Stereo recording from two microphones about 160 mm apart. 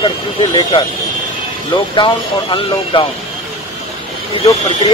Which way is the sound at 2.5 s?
30° left (ahead or behind).